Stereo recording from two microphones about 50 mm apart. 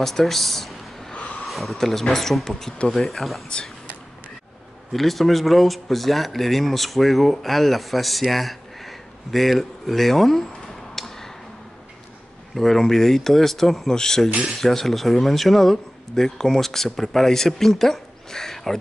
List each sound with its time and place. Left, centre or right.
0.0 s speech: centre
1.1 s a sound: left
1.4 s speech: centre
4.9 s speech: centre
11.0 s tick-tock: centre
12.5 s speech: centre